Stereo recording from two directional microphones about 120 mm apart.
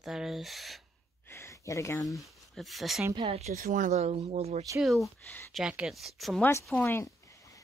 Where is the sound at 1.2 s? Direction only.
25° left (ahead or behind).